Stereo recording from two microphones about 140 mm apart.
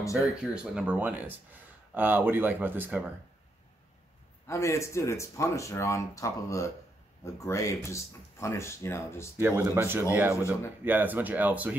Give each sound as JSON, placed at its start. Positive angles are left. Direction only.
{"t": 0.0, "sound": "speech", "side_deg": 25}
{"t": 0.4, "sound": "speech", "side_deg": -5}
{"t": 4.5, "sound": "speech", "side_deg": 20}
{"t": 9.4, "sound": "speech", "side_deg": -15}
{"t": 10.3, "sound": "speech", "side_deg": 20}
{"t": 10.8, "sound": "speech", "side_deg": -15}